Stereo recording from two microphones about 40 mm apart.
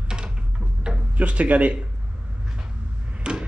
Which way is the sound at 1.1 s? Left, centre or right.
Right.